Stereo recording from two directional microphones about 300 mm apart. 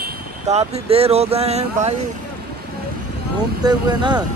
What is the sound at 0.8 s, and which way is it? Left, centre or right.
Speech, centre.